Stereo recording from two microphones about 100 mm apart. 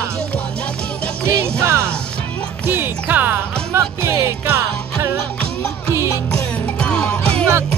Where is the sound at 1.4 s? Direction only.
25° right (ahead or behind).